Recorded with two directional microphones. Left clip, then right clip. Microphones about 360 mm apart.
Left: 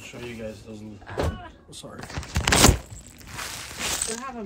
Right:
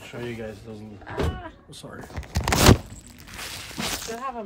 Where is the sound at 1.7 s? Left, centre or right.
Centre.